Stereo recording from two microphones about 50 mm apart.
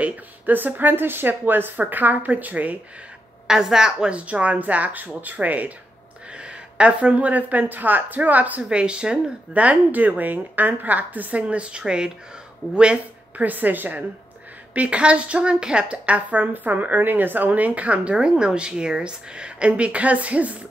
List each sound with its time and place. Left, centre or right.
0.5 s a woman's voice: right
3.4 s a woman's voice: centre
4.1 s a woman's voice: right
6.3 s a woman's voice: right
8.6 s a woman's voice: centre
13.4 s a woman's voice: right
14.7 s a woman's voice: right